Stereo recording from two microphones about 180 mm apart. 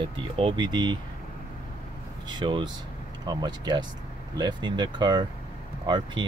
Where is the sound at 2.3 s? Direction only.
25° right (ahead or behind).